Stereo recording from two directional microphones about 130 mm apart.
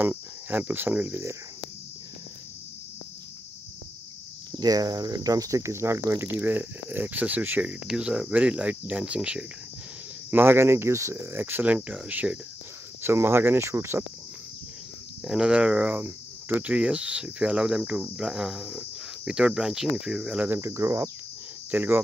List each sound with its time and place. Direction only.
0.0 s cricket: 15° right (ahead or behind)
4.5 s speech: 30° right (ahead or behind)
6.4 s cricket: 15° right (ahead or behind)
13.0 s speech: 20° right (ahead or behind)
15.2 s cricket: 5° right (ahead or behind); by 21.1 s 20° right (ahead or behind)
21.6 s speech: 15° right (ahead or behind)